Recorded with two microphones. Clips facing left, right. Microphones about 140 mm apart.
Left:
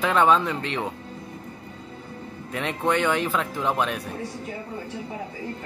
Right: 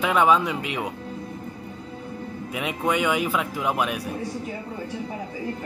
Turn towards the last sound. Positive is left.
turn(degrees=-10)  # may be behind; listen again after turning